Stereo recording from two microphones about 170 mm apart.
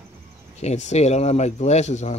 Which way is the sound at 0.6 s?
40° left (ahead or behind).